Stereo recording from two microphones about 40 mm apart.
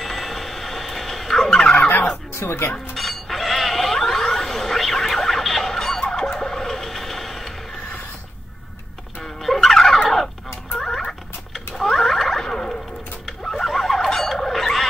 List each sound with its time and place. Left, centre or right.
0.0 s a sound: centre
1.5 s turkey: left
1.9 s fowl: left
2.3 s speech: left
3.3 s a sound: centre
9.4 s turkey: centre
9.9 s fowl: centre
10.8 s rodents: centre
12.4 s a sound: centre